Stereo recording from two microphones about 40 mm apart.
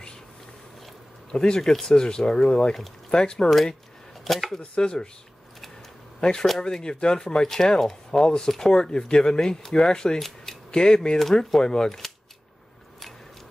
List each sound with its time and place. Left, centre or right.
1.3 s speech: centre
3.4 s speech: centre
4.6 s speech: left
6.6 s speech: centre
10.2 s camera: centre
10.7 s speech: centre
11.1 s speech: centre